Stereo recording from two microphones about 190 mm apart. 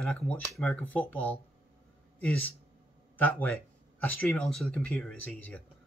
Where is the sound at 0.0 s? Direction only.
5° left (ahead or behind).